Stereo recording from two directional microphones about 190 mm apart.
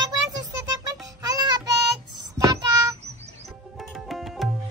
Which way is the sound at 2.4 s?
20° right (ahead or behind).